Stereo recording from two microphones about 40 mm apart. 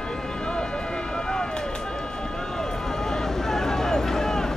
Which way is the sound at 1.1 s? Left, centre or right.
Left.